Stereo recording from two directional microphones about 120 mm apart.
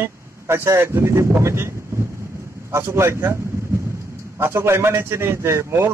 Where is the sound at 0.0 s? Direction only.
20° right (ahead or behind).